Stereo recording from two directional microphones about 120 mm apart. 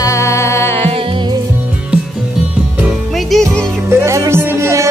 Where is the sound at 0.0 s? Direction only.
25° left (ahead or behind).